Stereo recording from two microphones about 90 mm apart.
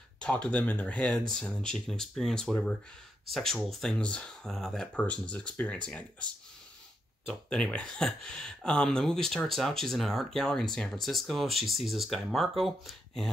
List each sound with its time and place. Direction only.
0.2 s speech: 10° left (ahead or behind)
7.4 s speech: 10° left (ahead or behind)